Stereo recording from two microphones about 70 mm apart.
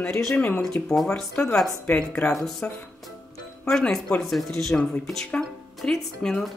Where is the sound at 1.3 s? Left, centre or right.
Centre.